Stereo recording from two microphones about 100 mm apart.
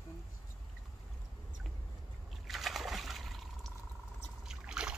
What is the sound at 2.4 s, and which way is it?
Liquid, centre (ahead or behind).